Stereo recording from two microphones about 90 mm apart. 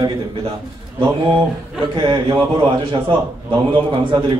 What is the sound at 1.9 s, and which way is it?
A man's voice, 65° right (ahead or behind).